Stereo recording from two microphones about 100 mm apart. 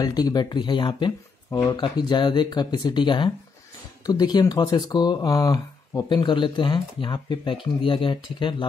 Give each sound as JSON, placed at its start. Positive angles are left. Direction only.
{"t": 0.0, "sound": "speech", "side_deg": 40}
{"t": 4.0, "sound": "speech", "side_deg": 40}